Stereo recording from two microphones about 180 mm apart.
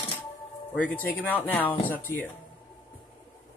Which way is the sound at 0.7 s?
10° left (ahead or behind).